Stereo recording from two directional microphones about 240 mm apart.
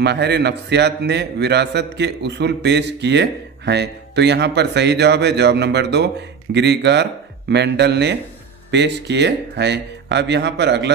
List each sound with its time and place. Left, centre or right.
0.0 s a man's voice: right